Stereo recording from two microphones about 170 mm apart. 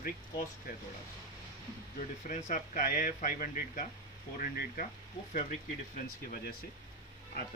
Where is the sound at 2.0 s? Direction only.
45° left (ahead or behind).